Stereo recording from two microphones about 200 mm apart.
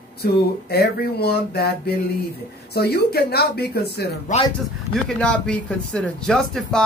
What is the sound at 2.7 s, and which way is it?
Speech, 55° left (ahead or behind).